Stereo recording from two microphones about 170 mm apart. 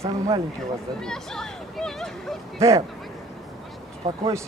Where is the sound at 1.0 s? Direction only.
5° left (ahead or behind).